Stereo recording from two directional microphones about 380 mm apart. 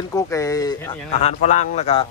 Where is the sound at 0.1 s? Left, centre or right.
Centre.